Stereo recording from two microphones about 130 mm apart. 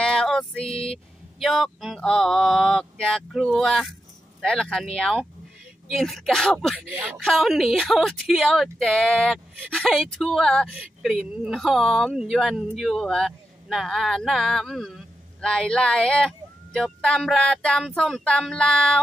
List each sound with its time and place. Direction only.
0.0 s female singing: 5° left (ahead or behind)
0.7 s speech: 50° left (ahead or behind)
0.9 s a woman's voice: centre (ahead or behind)